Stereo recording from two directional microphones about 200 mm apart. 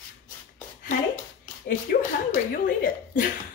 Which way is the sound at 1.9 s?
50° left (ahead or behind).